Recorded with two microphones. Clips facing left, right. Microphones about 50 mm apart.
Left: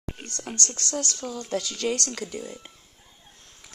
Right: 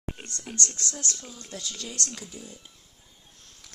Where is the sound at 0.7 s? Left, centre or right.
Left.